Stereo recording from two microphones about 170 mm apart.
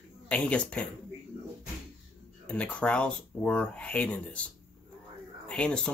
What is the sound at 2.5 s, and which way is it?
Speech, 5° left (ahead or behind).